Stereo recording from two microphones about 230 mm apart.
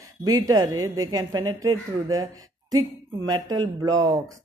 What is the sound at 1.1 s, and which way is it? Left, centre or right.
Speech, centre.